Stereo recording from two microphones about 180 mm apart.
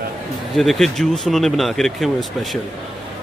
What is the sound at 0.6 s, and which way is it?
Speech, centre (ahead or behind).